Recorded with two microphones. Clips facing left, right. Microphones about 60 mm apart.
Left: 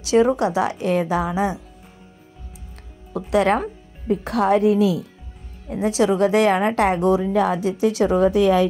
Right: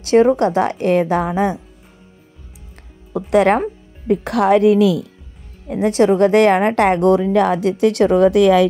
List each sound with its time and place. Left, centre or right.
0.0 s a woman's voice: right
3.1 s speech: right
4.1 s a woman's voice: right
5.7 s a woman's voice: right